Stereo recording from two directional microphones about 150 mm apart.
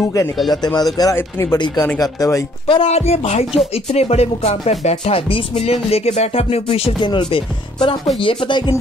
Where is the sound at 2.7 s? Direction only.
40° left (ahead or behind).